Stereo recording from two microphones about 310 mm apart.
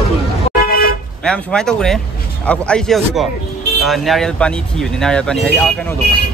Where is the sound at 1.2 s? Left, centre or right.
Centre.